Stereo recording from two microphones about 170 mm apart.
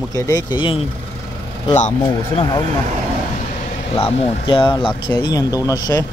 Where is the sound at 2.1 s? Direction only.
25° left (ahead or behind).